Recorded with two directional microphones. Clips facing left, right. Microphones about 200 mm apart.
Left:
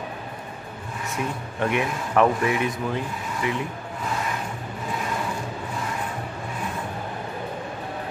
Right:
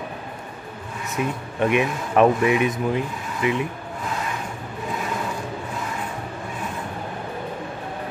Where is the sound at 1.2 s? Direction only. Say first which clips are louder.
Right 4 dB; 20° right (ahead or behind).